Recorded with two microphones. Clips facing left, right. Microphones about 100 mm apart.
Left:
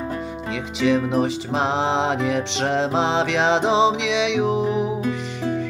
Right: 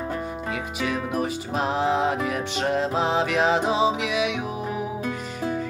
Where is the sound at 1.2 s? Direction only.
90° left.